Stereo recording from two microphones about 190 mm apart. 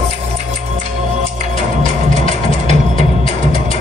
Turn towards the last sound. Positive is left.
turn(degrees=-40)  # may be behind; listen again after turning